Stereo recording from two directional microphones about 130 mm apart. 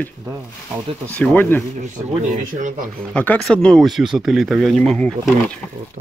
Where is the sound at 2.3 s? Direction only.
90° right.